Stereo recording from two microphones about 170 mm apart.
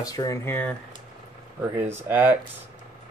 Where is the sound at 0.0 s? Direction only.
20° left (ahead or behind).